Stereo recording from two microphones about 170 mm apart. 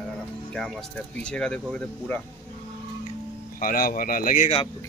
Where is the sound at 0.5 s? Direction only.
Centre (ahead or behind).